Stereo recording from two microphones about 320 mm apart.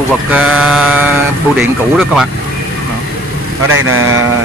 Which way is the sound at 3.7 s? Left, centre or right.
Right.